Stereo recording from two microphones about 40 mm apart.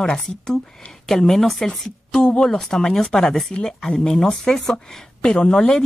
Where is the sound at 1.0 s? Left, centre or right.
Centre.